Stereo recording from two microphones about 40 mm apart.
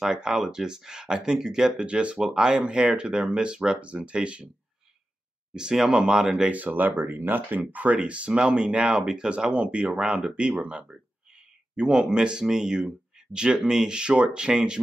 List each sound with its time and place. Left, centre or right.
0.0 s speech: centre
1.9 s speech: right
2.2 s speech: centre
5.5 s speech: centre
6.5 s speech: right
7.9 s speech: right
9.5 s speech: right
11.7 s speech: centre